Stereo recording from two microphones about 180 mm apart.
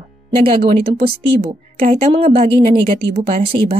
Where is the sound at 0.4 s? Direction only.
30° right (ahead or behind).